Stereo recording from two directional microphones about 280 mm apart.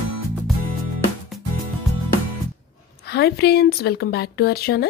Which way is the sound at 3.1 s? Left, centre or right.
Left.